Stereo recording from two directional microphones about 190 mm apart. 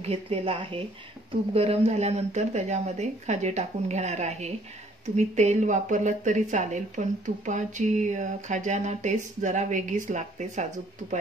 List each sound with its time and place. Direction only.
0.0 s speech: 30° right (ahead or behind)